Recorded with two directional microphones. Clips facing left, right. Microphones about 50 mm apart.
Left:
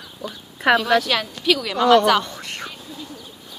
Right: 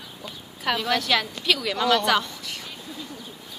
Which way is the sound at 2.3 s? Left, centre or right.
Left.